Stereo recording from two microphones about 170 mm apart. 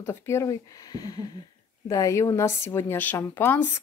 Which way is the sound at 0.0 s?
15° left (ahead or behind).